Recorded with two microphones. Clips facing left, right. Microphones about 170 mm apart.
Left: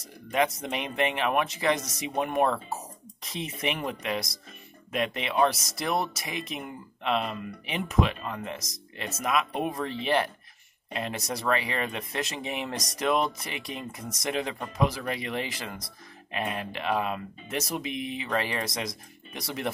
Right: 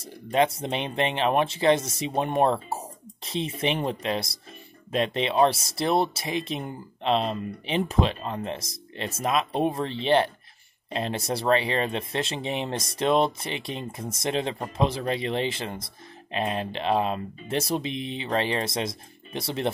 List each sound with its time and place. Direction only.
0.0 s speech: 30° right (ahead or behind)